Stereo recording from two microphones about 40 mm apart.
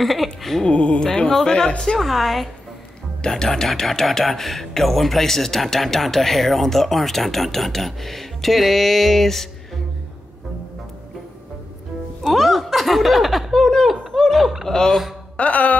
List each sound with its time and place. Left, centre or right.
0.0 s speech: centre
0.7 s speech: left
2.0 s speech: centre
3.2 s speech: centre
12.2 s a sound: centre
14.1 s laughter: centre
14.4 s snicker: centre
14.7 s a man's voice: centre
15.3 s music: left